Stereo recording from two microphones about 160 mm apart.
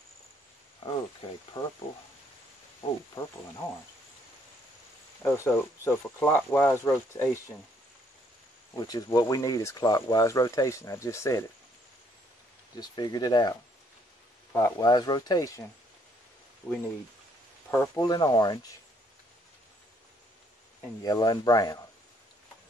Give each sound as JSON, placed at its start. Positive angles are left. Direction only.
{"t": 1.6, "sound": "speech", "side_deg": 25}
{"t": 3.2, "sound": "speech", "side_deg": 30}
{"t": 5.2, "sound": "speech", "side_deg": 15}
{"t": 8.7, "sound": "speech", "side_deg": 25}
{"t": 12.7, "sound": "speech", "side_deg": 25}
{"t": 17.6, "sound": "speech", "side_deg": 15}
{"t": 21.0, "sound": "speech", "side_deg": 25}